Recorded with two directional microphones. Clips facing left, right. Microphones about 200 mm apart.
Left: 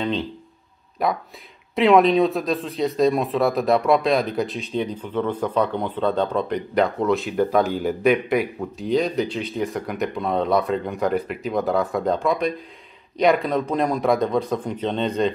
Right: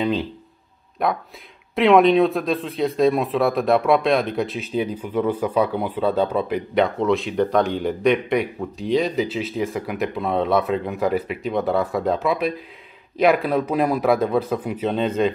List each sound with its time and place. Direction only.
0.0 s speech: 5° right (ahead or behind)